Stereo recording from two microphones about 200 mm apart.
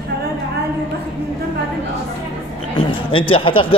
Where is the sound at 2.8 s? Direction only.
25° left (ahead or behind).